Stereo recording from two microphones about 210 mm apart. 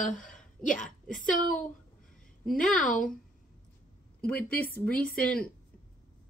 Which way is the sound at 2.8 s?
40° left (ahead or behind).